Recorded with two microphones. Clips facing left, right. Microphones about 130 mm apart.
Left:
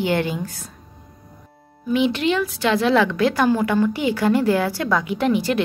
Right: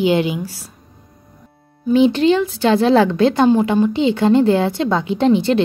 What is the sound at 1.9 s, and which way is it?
A woman's voice, 35° right (ahead or behind).